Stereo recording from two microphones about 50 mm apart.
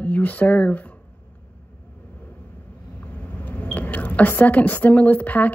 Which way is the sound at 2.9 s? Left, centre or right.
Left.